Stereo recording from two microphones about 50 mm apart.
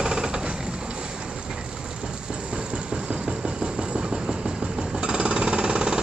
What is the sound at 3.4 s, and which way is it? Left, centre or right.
Vehicle, centre.